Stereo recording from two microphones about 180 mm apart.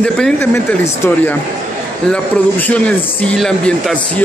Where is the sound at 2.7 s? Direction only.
5° left (ahead or behind).